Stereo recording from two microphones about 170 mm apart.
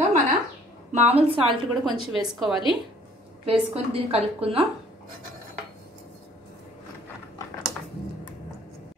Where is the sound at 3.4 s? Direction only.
35° right (ahead or behind).